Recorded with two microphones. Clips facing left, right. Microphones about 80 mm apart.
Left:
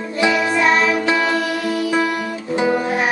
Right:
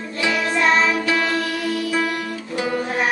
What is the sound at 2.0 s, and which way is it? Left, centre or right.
Music, centre.